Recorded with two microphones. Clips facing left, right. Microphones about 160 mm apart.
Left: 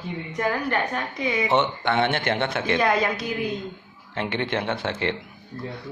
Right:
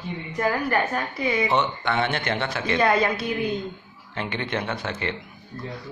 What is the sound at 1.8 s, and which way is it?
Speech, 60° left (ahead or behind).